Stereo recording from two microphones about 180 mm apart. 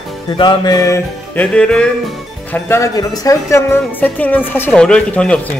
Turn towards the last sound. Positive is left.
turn(degrees=5)  # may be behind; listen again after turning